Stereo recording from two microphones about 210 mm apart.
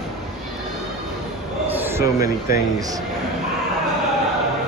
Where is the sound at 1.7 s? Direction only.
15° right (ahead or behind).